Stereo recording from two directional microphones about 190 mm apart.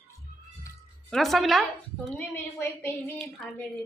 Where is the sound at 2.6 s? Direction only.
10° left (ahead or behind).